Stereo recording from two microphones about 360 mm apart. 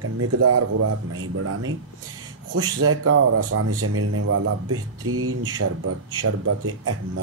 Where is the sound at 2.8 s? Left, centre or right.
Right.